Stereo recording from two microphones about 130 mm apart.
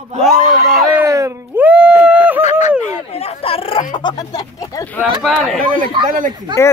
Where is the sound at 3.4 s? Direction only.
45° left (ahead or behind).